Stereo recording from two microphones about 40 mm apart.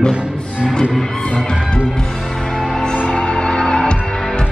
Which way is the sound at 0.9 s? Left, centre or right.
Centre.